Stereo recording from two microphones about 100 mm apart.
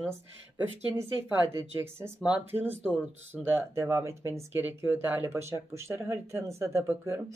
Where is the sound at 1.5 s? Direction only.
25° right (ahead or behind).